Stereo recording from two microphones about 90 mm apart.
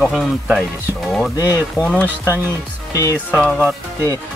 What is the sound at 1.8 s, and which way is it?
Speech, 15° left (ahead or behind).